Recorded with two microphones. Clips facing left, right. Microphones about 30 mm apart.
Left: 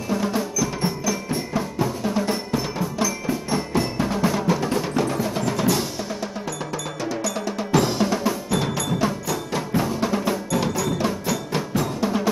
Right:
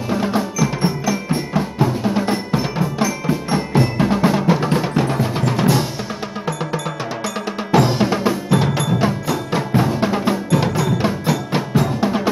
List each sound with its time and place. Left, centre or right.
0.1 s percussion: right
6.4 s music: right